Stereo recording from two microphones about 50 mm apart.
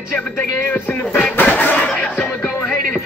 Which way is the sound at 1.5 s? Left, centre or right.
Left.